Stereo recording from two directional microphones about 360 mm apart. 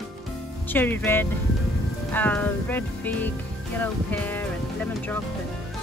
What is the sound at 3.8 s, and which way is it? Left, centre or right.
Speech, centre.